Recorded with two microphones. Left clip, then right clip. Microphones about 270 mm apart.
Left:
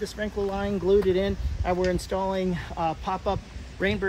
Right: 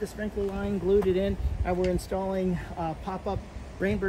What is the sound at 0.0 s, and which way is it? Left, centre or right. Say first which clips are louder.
Speech: left 3 dB; centre.